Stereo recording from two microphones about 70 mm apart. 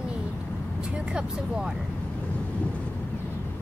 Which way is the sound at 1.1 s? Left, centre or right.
Centre.